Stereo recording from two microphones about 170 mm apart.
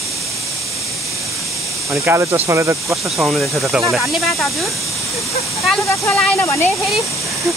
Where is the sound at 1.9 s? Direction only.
15° right (ahead or behind).